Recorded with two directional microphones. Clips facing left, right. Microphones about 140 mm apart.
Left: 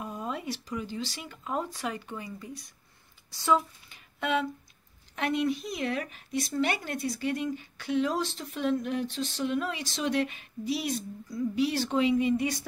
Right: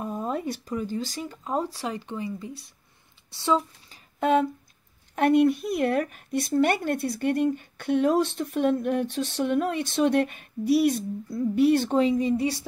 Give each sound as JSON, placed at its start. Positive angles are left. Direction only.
{"t": 0.0, "sound": "speech", "side_deg": -45}
{"t": 4.2, "sound": "speech", "side_deg": -45}